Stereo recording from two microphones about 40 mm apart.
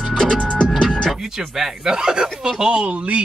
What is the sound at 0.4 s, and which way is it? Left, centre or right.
Music, left.